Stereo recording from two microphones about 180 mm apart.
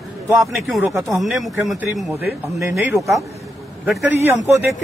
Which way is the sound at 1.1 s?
Centre (ahead or behind).